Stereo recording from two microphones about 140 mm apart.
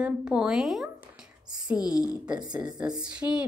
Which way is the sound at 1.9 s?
5° right (ahead or behind).